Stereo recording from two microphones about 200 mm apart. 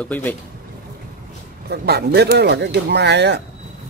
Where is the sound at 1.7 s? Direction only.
55° right (ahead or behind).